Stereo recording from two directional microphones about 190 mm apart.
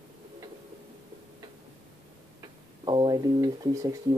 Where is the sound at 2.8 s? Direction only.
25° right (ahead or behind).